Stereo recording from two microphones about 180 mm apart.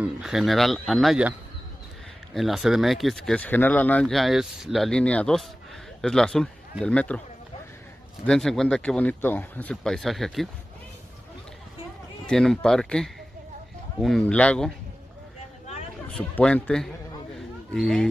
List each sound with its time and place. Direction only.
0.0 s speech: 5° right (ahead or behind)
2.3 s speech: centre (ahead or behind)
8.3 s speech: centre (ahead or behind)
12.3 s speech: 5° left (ahead or behind)
16.1 s speech: 5° left (ahead or behind)